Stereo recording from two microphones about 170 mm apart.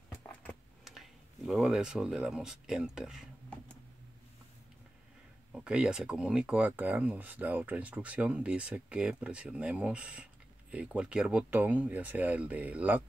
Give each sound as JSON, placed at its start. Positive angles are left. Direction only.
{"t": 0.3, "sound": "keys jangling", "side_deg": 10}
{"t": 0.8, "sound": "speech", "side_deg": 0}
{"t": 5.5, "sound": "speech", "side_deg": -5}